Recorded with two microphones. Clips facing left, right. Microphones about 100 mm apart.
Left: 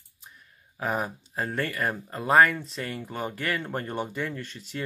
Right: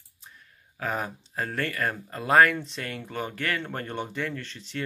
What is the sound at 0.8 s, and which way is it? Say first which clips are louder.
Speech: left 2 dB; 10° left (ahead or behind).